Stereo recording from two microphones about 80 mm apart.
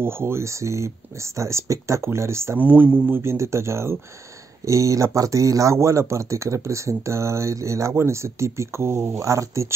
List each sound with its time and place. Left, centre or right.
0.0 s speech: right
2.6 s speech: centre; by 9.7 s right